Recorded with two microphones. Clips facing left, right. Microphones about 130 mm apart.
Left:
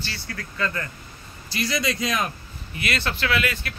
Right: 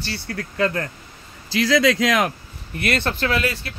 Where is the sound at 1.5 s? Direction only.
90° right.